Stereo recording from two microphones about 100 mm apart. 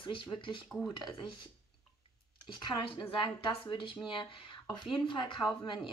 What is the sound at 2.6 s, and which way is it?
A woman's voice, 55° left (ahead or behind).